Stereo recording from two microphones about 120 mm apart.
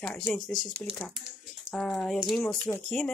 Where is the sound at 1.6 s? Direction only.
10° left (ahead or behind).